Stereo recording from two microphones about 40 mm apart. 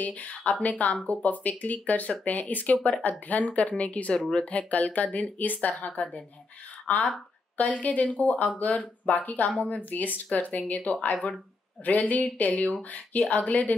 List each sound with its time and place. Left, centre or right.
0.0 s speech: left
4.5 s speech: left